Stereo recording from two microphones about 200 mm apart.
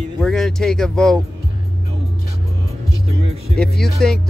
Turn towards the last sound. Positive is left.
turn(degrees=5)  # may be behind; listen again after turning